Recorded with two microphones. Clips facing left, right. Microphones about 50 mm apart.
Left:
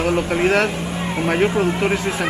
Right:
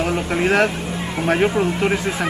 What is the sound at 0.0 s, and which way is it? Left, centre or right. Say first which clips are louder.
Speech: left 2 dB; centre.